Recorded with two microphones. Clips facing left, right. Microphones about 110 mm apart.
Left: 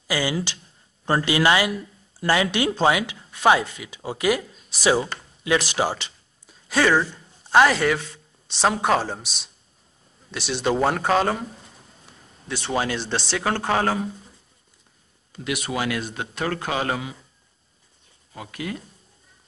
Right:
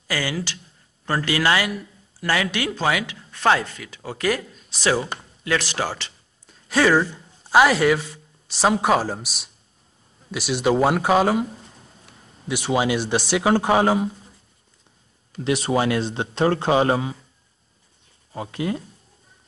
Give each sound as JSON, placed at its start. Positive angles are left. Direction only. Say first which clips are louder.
{"t": 0.1, "sound": "speech", "louder": "left 2 dB", "side_deg": 15}
{"t": 3.3, "sound": "speech", "louder": "left 1 dB", "side_deg": 10}
{"t": 5.4, "sound": "a sound", "louder": "left 2 dB", "side_deg": 15}
{"t": 6.7, "sound": "speech", "louder": "right 2 dB", "side_deg": 0}
{"t": 12.4, "sound": "speech", "louder": "right 4 dB", "side_deg": -10}
{"t": 15.4, "sound": "speech", "louder": "right 6 dB", "side_deg": -30}
{"t": 18.3, "sound": "speech", "louder": "right 6 dB", "side_deg": -30}